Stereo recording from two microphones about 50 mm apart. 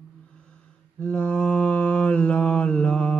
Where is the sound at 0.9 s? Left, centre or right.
Left.